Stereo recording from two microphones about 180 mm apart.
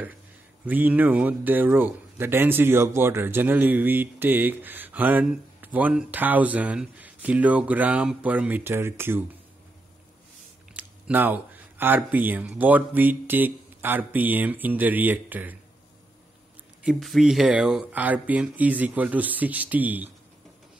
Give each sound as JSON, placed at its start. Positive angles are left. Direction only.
{"t": 0.7, "sound": "a man's voice", "side_deg": -10}
{"t": 10.8, "sound": "a man's voice", "side_deg": -10}
{"t": 16.8, "sound": "a man's voice", "side_deg": 0}